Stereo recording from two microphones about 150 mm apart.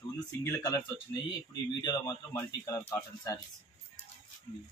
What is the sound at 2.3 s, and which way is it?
Speech, 20° left (ahead or behind).